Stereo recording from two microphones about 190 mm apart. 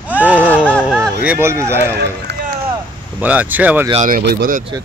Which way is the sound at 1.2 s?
15° right (ahead or behind).